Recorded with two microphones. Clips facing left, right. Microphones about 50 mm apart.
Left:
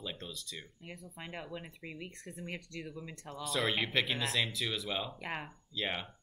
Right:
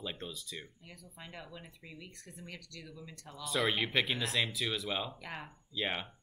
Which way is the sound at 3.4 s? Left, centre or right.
Centre.